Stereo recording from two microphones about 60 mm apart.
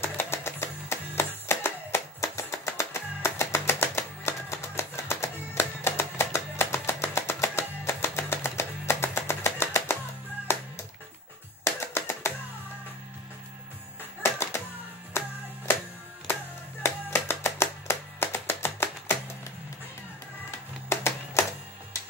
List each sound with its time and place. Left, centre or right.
0.0 s music: left
2.1 s music: left
14.2 s music: left
16.8 s music: left
20.9 s music: left